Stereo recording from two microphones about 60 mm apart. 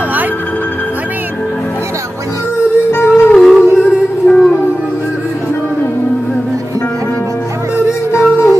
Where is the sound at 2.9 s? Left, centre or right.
Left.